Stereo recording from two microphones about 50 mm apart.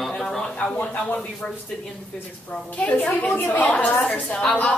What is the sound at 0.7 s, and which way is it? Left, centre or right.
Speech, left.